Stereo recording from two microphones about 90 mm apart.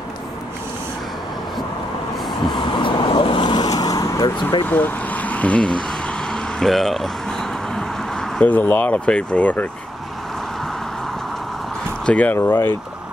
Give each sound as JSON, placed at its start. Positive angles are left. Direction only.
{"t": 2.5, "sound": "vehicle", "side_deg": 65}
{"t": 4.4, "sound": "speech", "side_deg": 60}
{"t": 4.6, "sound": "vehicle", "side_deg": 20}
{"t": 8.5, "sound": "speech", "side_deg": 20}
{"t": 12.1, "sound": "speech", "side_deg": 15}
{"t": 12.4, "sound": "speech", "side_deg": 25}